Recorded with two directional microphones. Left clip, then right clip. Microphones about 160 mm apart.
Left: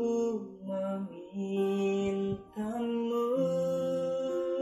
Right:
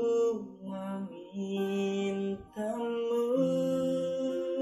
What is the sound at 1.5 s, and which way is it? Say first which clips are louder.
Mantra: left 2 dB; 30° left (ahead or behind).